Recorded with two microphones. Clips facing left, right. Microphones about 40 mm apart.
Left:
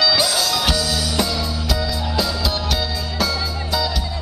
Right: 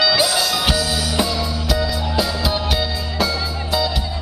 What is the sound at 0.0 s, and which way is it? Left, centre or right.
Music, centre.